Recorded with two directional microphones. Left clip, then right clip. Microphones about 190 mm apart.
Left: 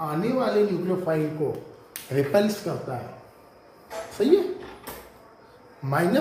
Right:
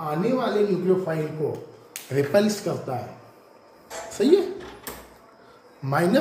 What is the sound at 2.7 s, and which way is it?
Speech, 10° right (ahead or behind).